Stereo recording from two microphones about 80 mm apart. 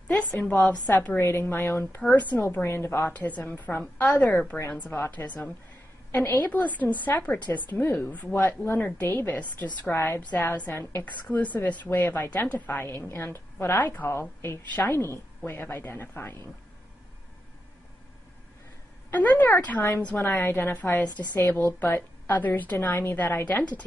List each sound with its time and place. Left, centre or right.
0.2 s a woman's voice: centre
2.0 s speech: centre
3.1 s a woman's voice: centre
19.1 s a woman's voice: left